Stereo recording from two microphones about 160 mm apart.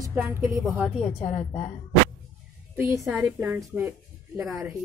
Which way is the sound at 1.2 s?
45° left (ahead or behind).